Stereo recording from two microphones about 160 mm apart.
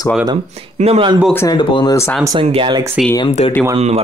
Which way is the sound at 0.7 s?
40° right (ahead or behind).